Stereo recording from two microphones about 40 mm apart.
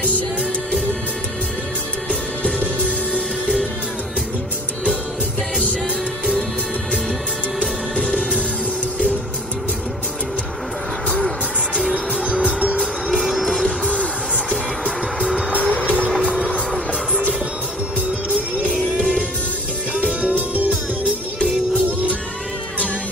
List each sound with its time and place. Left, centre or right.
8.0 s music: left
11.9 s music: right
13.5 s music: left
15.5 s music: left
18.9 s music: left
20.1 s music: right
21.4 s music: left